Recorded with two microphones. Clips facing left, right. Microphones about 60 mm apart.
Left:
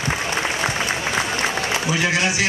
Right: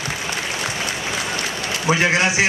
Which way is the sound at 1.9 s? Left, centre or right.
Right.